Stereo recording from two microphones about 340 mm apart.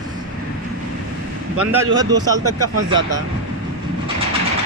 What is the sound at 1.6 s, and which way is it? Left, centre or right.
Speech, centre.